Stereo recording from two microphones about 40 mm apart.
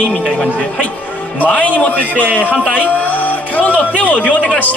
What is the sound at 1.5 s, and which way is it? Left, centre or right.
A man's voice, left.